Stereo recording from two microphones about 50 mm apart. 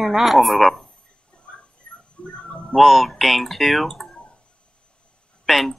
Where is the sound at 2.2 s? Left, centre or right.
Centre.